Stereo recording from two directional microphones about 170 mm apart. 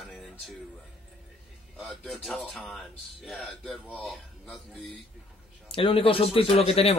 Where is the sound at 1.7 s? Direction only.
Centre (ahead or behind).